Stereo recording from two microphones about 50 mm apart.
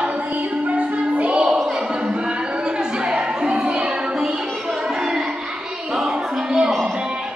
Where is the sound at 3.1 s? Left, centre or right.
Right.